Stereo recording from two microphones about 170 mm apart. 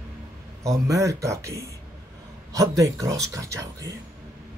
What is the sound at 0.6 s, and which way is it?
Speech, 20° right (ahead or behind).